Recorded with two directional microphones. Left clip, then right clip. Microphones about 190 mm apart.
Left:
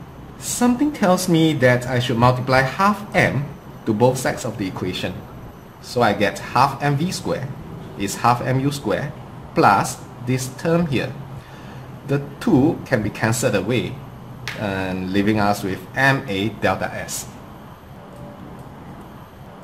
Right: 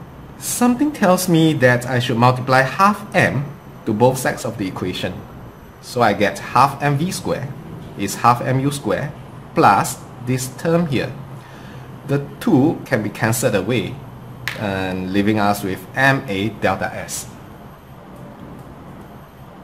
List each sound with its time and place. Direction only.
0.6 s speech: 10° right (ahead or behind)
12.1 s speech: 5° right (ahead or behind)